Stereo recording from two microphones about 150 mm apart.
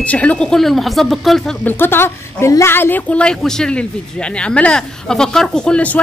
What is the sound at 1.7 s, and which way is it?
A woman's voice, 15° left (ahead or behind).